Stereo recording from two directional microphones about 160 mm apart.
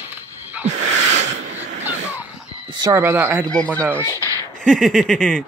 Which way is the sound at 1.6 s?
45° right (ahead or behind).